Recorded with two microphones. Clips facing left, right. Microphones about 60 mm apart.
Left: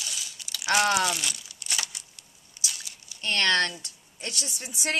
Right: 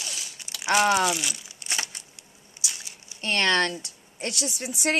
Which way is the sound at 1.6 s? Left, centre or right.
Right.